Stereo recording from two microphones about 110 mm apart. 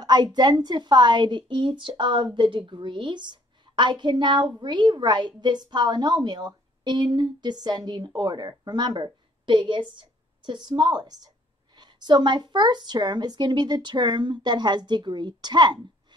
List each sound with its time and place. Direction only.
0.0 s a woman's voice: 40° right (ahead or behind)